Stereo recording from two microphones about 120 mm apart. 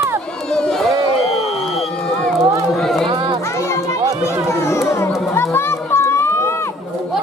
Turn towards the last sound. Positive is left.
turn(degrees=20)  # may be behind; listen again after turning